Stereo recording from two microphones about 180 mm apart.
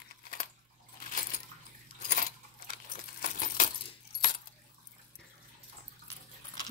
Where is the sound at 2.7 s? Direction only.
55° left (ahead or behind).